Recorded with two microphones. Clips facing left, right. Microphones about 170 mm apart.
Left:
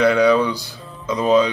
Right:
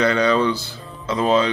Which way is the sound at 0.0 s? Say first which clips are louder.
Left 3 dB; 10° left (ahead or behind).